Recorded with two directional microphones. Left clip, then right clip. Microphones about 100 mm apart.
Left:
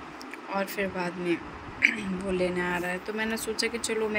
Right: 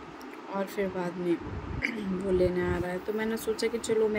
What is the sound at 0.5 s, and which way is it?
Speech, 25° right (ahead or behind).